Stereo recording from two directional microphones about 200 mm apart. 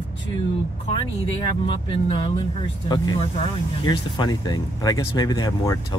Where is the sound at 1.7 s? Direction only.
25° left (ahead or behind).